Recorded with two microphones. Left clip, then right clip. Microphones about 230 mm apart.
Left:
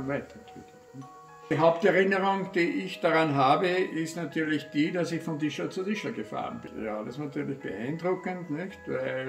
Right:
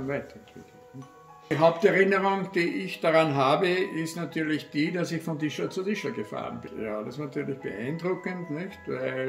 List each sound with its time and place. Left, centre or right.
1.6 s a man's voice: centre